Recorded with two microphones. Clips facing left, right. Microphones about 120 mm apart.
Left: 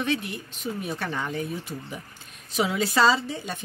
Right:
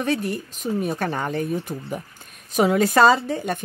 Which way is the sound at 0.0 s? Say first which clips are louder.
Right 4 dB; 40° right (ahead or behind).